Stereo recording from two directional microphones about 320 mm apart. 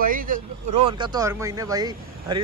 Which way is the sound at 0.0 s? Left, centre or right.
Right.